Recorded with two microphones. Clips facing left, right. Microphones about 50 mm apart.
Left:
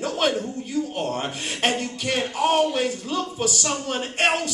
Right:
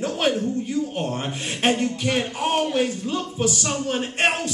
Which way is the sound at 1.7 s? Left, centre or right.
Right.